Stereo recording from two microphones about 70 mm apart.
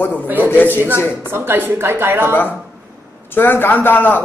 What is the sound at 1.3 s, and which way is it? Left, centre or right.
A woman's voice, right.